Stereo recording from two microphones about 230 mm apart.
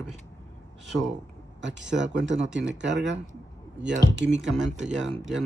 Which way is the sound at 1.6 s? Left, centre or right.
Right.